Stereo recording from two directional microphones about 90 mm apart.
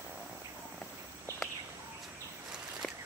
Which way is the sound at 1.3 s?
35° right (ahead or behind).